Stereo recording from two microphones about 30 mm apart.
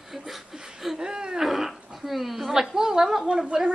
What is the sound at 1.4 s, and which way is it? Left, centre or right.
Dog, centre.